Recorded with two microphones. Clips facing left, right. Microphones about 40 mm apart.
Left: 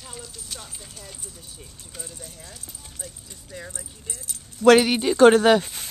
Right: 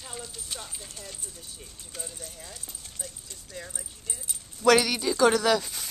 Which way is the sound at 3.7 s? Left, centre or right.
Centre.